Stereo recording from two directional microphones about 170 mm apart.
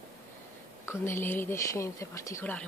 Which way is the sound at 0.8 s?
15° left (ahead or behind).